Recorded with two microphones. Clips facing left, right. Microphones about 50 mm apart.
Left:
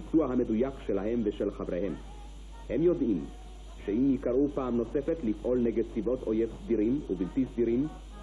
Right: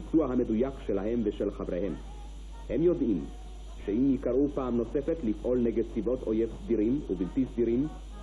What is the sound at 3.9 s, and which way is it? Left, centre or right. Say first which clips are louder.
Speech: even; centre.